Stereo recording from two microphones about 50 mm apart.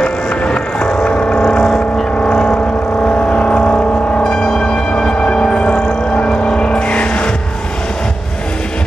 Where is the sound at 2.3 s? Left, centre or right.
Centre.